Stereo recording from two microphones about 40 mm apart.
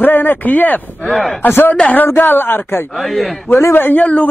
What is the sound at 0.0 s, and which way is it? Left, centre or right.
Speech, left.